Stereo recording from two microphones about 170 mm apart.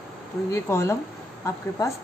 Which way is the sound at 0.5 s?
15° left (ahead or behind).